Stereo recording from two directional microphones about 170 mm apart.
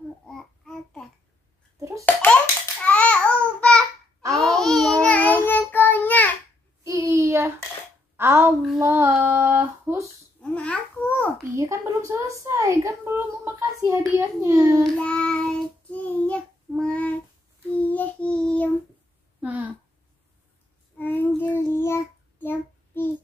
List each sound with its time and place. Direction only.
0.3 s child singing: 5° left (ahead or behind)
1.8 s babbling: 15° right (ahead or behind)
2.0 s babbling: 10° left (ahead or behind)
5.0 s child singing: 10° left (ahead or behind)
6.8 s a sound: 20° right (ahead or behind)
8.7 s child singing: 15° right (ahead or behind)
10.4 s babbling: 5° left (ahead or behind)
11.5 s a sound: 15° right (ahead or behind)
14.8 s child singing: 5° left (ahead or behind)
19.4 s a sound: 10° right (ahead or behind)
21.0 s child singing: 10° left (ahead or behind)